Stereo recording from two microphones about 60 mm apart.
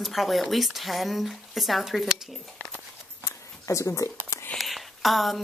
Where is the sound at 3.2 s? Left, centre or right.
Left.